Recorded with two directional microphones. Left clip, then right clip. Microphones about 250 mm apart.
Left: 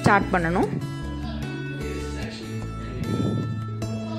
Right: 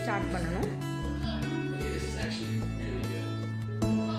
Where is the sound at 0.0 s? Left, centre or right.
Left.